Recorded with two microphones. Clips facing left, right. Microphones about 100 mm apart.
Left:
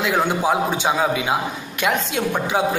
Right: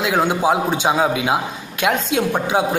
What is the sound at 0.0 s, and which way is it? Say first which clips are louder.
A man's voice: right 2 dB; 15° right (ahead or behind).